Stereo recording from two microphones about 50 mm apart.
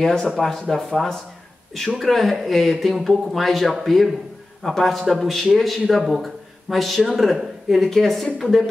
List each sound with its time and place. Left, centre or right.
0.0 s a man's voice: centre